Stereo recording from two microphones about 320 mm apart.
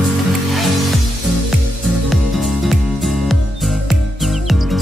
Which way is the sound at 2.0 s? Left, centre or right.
Centre.